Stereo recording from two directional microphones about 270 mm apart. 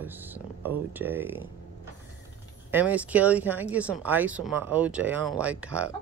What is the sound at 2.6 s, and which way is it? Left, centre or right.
Speech, centre.